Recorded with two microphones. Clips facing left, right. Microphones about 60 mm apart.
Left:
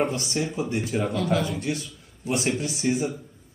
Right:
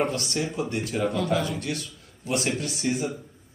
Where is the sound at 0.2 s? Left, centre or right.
Centre.